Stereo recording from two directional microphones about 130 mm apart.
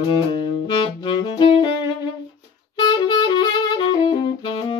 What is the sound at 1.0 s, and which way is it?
Saxophone, 40° left (ahead or behind).